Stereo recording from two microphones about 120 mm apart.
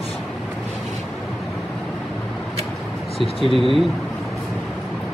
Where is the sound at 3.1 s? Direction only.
50° left (ahead or behind).